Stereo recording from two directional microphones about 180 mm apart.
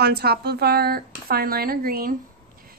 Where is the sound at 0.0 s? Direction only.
65° right (ahead or behind).